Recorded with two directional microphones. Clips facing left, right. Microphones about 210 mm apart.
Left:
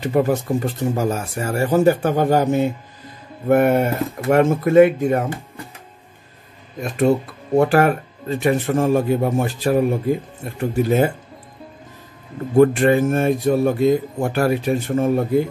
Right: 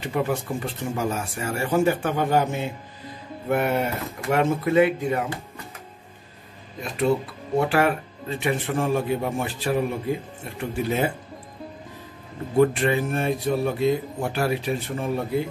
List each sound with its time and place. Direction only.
0.0 s speech: 40° left (ahead or behind)
7.5 s speech: 45° left (ahead or behind)
12.5 s speech: 45° left (ahead or behind)